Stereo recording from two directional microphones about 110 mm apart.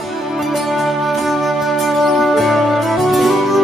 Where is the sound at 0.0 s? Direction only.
Centre (ahead or behind).